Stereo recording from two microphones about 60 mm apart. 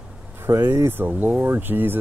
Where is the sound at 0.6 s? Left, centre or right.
Right.